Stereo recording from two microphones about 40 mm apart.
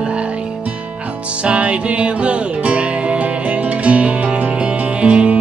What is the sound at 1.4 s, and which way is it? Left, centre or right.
Music, right.